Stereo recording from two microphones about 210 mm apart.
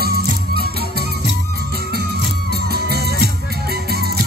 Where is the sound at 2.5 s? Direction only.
50° right (ahead or behind).